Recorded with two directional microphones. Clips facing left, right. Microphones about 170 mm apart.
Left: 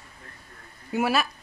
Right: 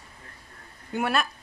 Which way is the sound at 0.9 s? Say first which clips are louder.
Left 2 dB; 5° left (ahead or behind).